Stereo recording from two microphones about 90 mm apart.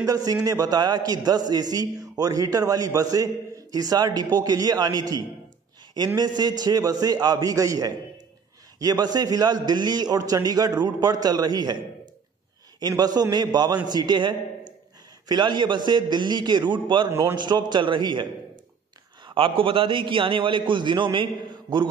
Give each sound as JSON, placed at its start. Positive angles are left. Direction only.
{"t": 0.0, "sound": "a man's voice", "side_deg": -40}
{"t": 12.8, "sound": "a man's voice", "side_deg": -50}
{"t": 19.2, "sound": "a man's voice", "side_deg": -75}